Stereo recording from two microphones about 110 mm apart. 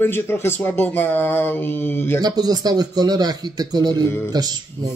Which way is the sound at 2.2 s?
40° right (ahead or behind).